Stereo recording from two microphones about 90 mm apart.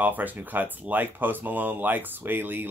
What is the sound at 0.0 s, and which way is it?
Speech, 20° right (ahead or behind).